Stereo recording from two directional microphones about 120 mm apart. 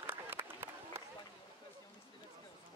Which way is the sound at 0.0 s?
15° right (ahead or behind).